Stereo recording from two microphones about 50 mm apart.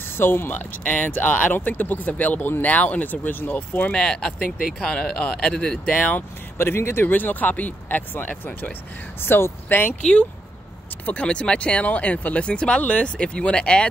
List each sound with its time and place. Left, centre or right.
0.2 s speech: left
0.8 s speech: left
3.9 s speech: centre
5.9 s speech: left
6.1 s speech: left
9.2 s speech: left
11.1 s speech: left